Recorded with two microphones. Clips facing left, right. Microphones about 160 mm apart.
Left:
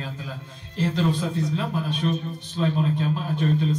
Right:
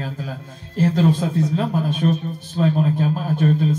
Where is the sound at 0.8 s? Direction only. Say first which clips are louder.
Right 6 dB; 45° right (ahead or behind).